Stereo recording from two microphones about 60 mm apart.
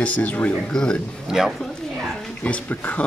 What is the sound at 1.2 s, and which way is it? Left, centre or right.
Speech, centre.